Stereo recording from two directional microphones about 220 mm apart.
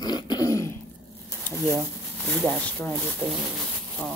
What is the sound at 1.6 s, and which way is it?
Speech, centre (ahead or behind).